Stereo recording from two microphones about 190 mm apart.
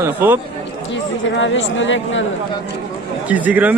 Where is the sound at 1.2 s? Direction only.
80° left.